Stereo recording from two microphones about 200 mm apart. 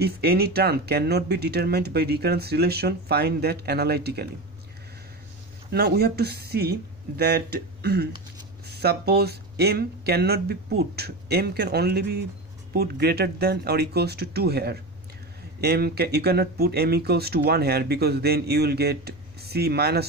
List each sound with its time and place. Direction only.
0.0 s speech: 50° right (ahead or behind)
5.7 s speech: 55° right (ahead or behind)